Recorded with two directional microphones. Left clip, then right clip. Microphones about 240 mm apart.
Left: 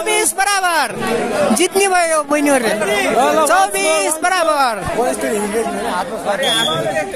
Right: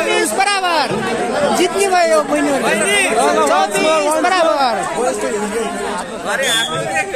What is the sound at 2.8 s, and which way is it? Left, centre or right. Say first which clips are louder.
Speech: right 1 dB; right.